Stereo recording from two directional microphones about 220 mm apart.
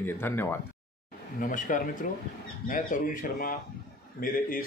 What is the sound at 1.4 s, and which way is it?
Speech, 35° left (ahead or behind).